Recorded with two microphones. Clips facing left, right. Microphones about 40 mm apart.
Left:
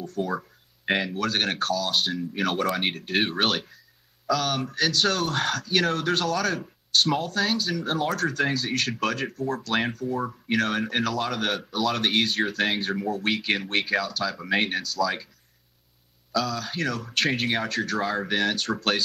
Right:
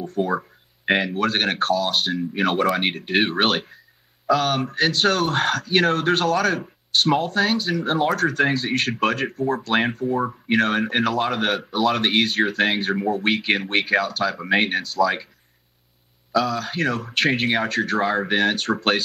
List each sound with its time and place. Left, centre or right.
0.0 s speech: right
0.3 s speech: centre
2.1 s speech: right
9.8 s speech: centre
12.3 s speech: centre
12.9 s speech: right
16.3 s speech: right